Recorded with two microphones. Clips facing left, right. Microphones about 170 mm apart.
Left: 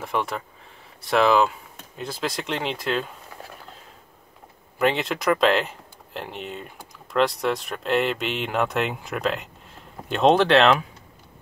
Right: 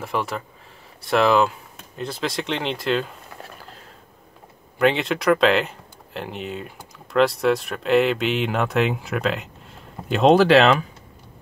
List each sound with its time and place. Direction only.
0.0 s speech: centre (ahead or behind)
4.7 s speech: centre (ahead or behind)